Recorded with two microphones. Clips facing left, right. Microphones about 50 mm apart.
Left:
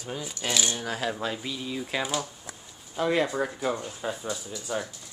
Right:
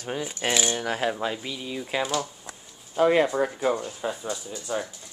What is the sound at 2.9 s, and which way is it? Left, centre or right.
Speech, right.